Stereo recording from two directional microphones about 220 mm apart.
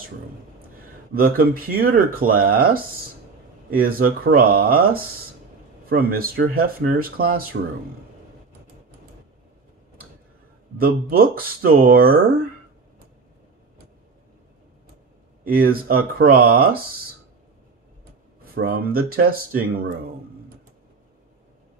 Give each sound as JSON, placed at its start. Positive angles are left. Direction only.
{"t": 1.1, "sound": "speech", "side_deg": -40}
{"t": 10.8, "sound": "speech", "side_deg": -40}
{"t": 15.4, "sound": "speech", "side_deg": -40}
{"t": 18.4, "sound": "speech", "side_deg": -40}